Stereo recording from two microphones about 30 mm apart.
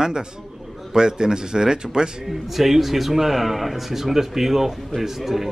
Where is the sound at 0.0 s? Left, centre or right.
Right.